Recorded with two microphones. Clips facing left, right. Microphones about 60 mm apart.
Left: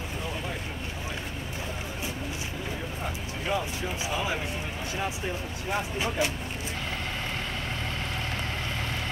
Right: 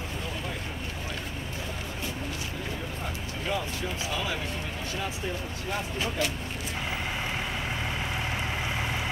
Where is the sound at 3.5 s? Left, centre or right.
Centre.